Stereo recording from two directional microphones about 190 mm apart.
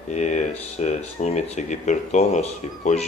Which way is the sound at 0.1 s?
40° left (ahead or behind).